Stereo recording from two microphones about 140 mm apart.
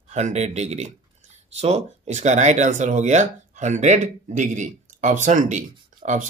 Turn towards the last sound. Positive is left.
turn(degrees=-60)  # may be behind; listen again after turning